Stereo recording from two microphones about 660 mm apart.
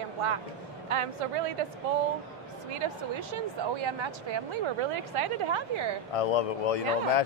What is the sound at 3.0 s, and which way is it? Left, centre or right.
Speech, right.